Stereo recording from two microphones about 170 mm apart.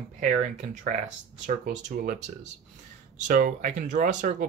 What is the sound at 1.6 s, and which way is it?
Speech, 55° right (ahead or behind).